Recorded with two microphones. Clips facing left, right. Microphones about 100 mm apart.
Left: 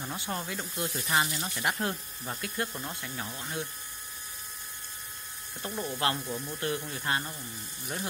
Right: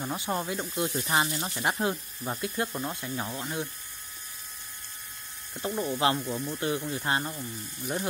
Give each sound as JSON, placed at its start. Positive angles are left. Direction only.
{"t": 0.3, "sound": "speech", "side_deg": -20}
{"t": 5.6, "sound": "speech", "side_deg": -20}